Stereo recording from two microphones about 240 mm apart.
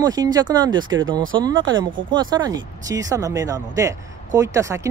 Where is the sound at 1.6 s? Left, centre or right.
Right.